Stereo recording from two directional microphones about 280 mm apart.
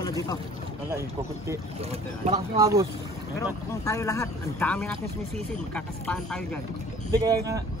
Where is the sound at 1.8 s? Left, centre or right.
Right.